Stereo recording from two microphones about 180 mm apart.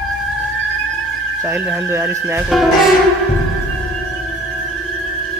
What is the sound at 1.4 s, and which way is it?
Speech, 15° right (ahead or behind).